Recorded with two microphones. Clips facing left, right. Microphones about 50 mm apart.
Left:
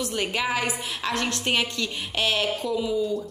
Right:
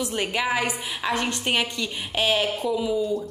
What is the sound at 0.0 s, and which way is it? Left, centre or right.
Speech, centre.